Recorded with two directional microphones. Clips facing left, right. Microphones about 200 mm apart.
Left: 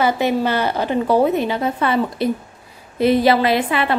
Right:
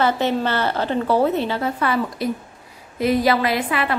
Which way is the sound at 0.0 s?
10° left (ahead or behind).